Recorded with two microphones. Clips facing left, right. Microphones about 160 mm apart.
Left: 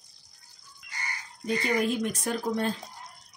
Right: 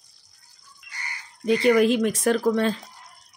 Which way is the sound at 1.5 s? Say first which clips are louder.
Right 9 dB; 90° right.